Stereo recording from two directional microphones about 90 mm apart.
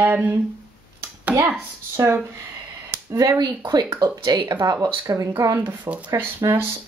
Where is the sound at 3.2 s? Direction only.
45° right (ahead or behind).